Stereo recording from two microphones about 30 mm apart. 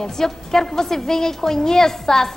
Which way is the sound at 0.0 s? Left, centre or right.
Centre.